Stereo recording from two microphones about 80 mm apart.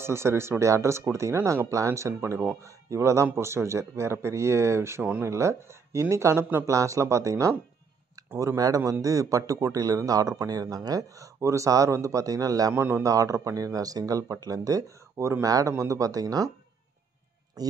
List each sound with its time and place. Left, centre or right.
0.0 s speech: right
12.7 s speech: right
17.6 s speech: right